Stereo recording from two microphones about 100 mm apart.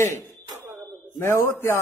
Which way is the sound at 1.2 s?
25° left (ahead or behind).